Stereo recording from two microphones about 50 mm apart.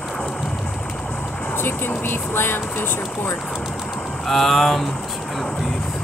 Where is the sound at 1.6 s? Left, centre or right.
Left.